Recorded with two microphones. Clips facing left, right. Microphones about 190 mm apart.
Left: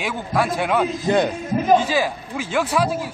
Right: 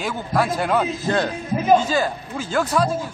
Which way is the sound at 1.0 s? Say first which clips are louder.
Left 6 dB; 15° left (ahead or behind).